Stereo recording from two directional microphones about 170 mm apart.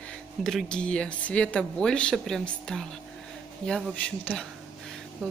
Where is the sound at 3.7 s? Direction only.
5° left (ahead or behind).